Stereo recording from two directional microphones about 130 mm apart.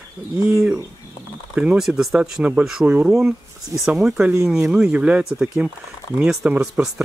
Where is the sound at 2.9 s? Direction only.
15° right (ahead or behind).